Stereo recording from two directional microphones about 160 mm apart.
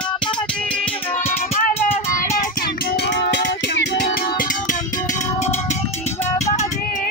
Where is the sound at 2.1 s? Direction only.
55° left (ahead or behind).